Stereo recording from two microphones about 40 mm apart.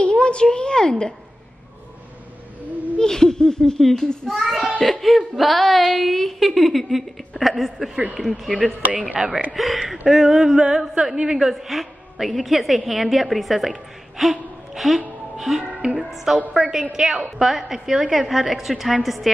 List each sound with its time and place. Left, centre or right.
0.0 s a woman's voice: left
3.0 s a child's voice: centre
4.4 s a woman's voice: centre
9.2 s a sound: centre
9.5 s a woman's voice: centre
10.0 s a sound: centre
11.1 s a woman's voice: centre
16.0 s a sound: centre
18.1 s a woman's voice: centre